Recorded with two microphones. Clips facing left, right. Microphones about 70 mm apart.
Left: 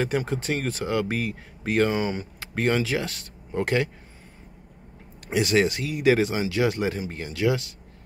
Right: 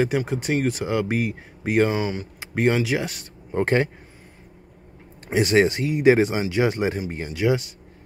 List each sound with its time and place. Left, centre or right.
0.0 s speech: centre
2.0 s speech: centre
2.4 s speech: centre
3.5 s speech: right
5.3 s speech: right